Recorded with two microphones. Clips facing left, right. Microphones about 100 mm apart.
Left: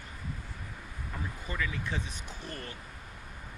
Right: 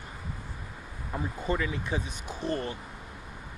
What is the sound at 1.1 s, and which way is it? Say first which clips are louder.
Speech: right 9 dB; 30° right (ahead or behind).